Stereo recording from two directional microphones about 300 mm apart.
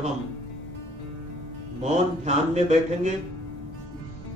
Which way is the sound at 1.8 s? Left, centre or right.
Right.